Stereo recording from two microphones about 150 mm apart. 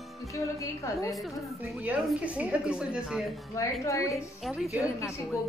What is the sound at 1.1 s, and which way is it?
A woman's voice, centre (ahead or behind).